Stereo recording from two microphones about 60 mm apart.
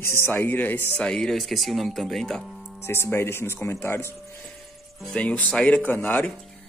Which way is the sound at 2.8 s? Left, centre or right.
Left.